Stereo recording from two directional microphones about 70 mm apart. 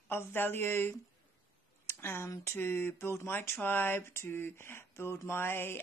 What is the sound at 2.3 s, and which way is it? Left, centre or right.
Speech, left.